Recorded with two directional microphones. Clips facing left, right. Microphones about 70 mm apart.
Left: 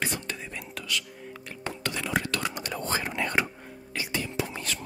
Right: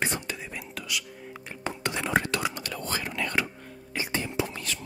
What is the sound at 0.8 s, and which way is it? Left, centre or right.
Whispering, centre.